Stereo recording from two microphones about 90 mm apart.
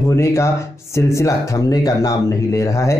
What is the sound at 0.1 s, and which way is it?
Speech, 30° left (ahead or behind).